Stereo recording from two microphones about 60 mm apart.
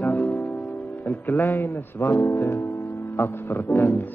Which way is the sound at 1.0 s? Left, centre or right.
Left.